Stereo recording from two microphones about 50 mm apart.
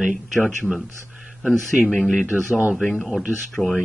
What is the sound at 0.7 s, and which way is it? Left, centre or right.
Speech, centre.